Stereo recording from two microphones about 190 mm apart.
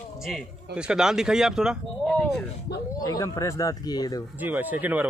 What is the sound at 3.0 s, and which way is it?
Speech, 20° left (ahead or behind).